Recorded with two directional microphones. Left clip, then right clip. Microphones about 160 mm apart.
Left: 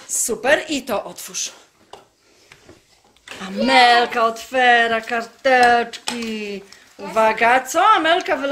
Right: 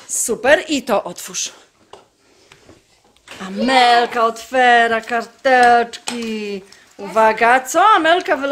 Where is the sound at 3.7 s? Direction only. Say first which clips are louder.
Right 1 dB; 20° right (ahead or behind).